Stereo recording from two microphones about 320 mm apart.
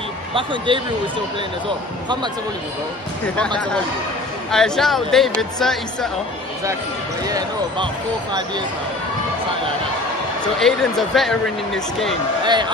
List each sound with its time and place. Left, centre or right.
0.3 s speech: centre
3.3 s speech: centre
7.2 s speech: centre
10.6 s speech: centre
12.4 s speech: centre